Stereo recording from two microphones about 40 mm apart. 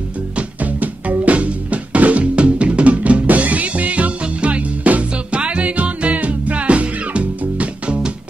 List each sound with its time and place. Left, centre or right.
0.4 s music: right